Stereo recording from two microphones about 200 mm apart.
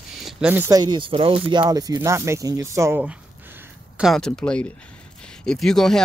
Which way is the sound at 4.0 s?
Centre (ahead or behind).